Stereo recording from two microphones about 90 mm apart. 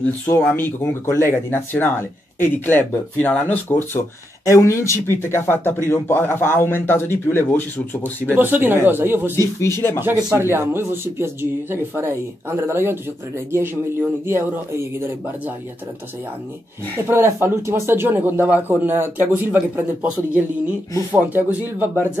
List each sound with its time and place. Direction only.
0.3 s speech: 25° left (ahead or behind)
8.4 s speech: 20° right (ahead or behind)
9.3 s speech: 30° left (ahead or behind)
10.0 s speech: 25° right (ahead or behind)
17.1 s speech: 30° right (ahead or behind)